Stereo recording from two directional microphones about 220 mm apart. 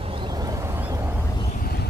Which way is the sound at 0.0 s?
25° right (ahead or behind).